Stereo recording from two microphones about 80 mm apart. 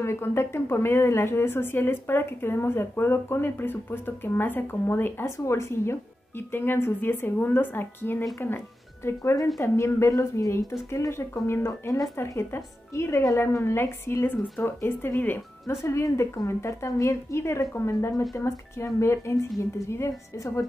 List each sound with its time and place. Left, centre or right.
0.0 s a woman's voice: left